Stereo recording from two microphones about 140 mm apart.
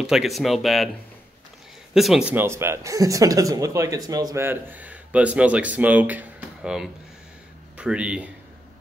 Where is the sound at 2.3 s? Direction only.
20° right (ahead or behind).